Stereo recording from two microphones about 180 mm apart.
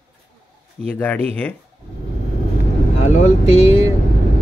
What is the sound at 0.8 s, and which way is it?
Speech, 5° left (ahead or behind).